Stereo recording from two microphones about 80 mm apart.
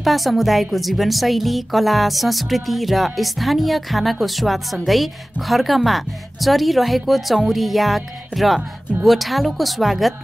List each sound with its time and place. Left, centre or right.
0.0 s a woman's voice: centre